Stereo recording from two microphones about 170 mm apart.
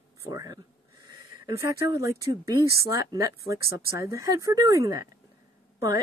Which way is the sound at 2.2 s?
20° right (ahead or behind).